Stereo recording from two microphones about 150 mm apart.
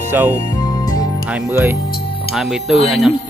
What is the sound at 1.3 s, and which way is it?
Speech, 10° right (ahead or behind).